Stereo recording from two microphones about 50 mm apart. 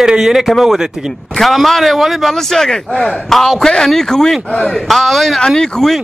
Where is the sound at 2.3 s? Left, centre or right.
Centre.